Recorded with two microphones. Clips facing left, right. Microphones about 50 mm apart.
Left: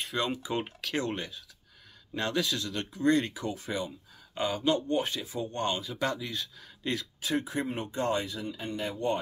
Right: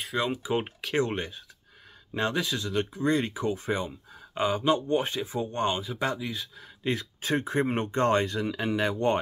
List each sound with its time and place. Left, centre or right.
0.0 s speech: centre; by 8.5 s right
8.5 s speech: right